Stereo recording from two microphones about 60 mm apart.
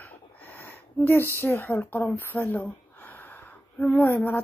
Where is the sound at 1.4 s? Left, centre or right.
Left.